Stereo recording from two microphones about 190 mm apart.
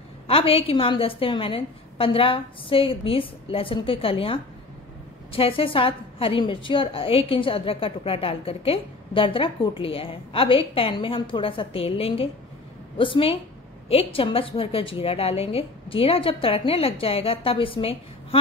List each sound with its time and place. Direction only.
0.3 s a woman's voice: 30° left (ahead or behind)